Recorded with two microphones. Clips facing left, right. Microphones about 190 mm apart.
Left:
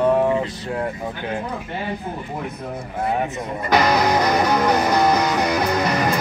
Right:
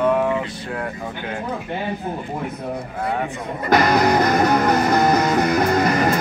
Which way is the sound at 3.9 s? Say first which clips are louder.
Right 2 dB; 50° right (ahead or behind).